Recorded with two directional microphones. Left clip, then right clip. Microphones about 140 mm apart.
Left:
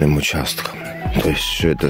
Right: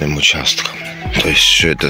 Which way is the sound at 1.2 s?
45° left (ahead or behind).